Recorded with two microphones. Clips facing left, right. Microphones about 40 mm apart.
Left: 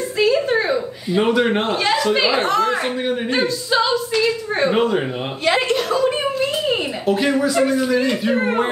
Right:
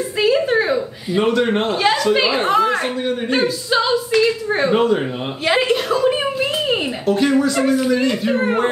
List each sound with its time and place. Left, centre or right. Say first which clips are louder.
0.2 s a sound: right 1 dB; centre
1.2 s a man's voice: right 1 dB; centre
1.8 s a woman's voice: right 3 dB; centre
3.3 s speech: right 1 dB; centre
4.6 s speech: right 1 dB; centre
5.4 s a sound: right 1 dB; centre
7.1 s speech: right 2 dB; centre